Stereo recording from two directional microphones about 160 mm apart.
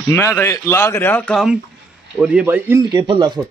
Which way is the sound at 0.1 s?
15° left (ahead or behind).